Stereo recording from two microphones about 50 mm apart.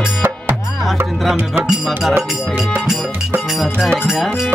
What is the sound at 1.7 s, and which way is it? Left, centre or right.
Music, centre.